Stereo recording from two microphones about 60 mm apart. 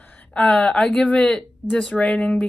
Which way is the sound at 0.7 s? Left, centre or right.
Centre.